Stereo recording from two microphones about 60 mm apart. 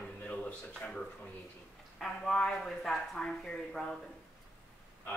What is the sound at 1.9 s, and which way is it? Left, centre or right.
Speech, centre.